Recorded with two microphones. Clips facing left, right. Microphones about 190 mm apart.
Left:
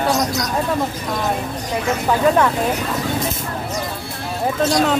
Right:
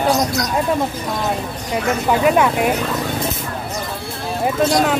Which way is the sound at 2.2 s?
10° right (ahead or behind).